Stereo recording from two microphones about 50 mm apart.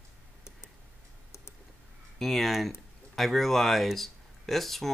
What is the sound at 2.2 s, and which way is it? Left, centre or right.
Speech, centre.